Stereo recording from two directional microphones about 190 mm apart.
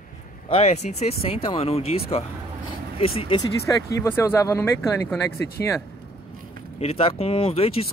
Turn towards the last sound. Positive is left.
turn(degrees=30)  # may be behind; listen again after turning